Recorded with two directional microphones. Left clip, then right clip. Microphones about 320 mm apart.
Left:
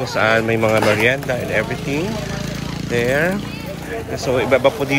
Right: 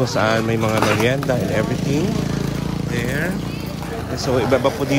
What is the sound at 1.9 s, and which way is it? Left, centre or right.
Speech, right.